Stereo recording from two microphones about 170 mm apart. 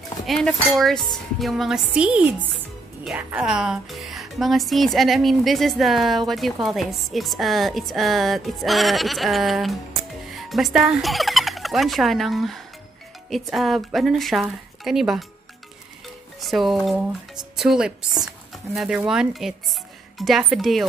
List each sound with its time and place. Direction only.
0.3 s dishes: centre (ahead or behind)
10.3 s fowl: centre (ahead or behind)
13.3 s dishes: centre (ahead or behind)
16.3 s dishes: centre (ahead or behind)